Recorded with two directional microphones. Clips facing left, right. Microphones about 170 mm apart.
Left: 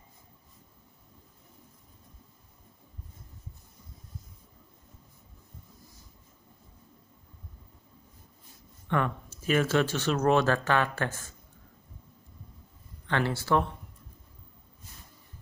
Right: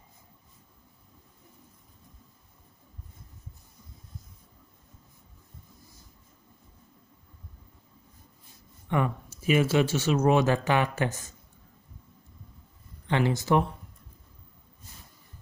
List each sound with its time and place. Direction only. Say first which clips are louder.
8.8 s speech: right 1 dB; 10° right (ahead or behind)
13.0 s speech: right 3 dB; 15° right (ahead or behind)